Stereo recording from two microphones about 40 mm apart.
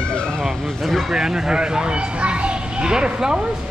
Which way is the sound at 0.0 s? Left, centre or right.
Left.